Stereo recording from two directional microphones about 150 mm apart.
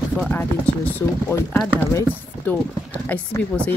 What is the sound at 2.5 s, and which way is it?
Speech, 10° left (ahead or behind).